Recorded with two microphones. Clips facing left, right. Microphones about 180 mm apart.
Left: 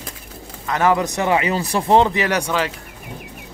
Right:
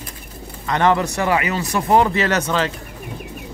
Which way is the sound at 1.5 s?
35° left (ahead or behind).